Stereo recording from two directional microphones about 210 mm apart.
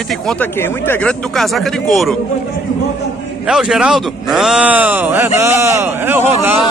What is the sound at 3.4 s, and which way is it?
A man's voice, 5° right (ahead or behind).